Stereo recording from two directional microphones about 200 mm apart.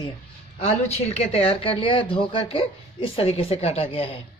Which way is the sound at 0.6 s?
30° left (ahead or behind).